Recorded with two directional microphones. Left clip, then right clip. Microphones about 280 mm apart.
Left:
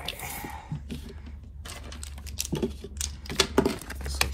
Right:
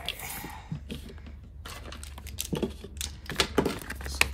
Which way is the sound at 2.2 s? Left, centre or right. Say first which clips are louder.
Left 3 dB; centre.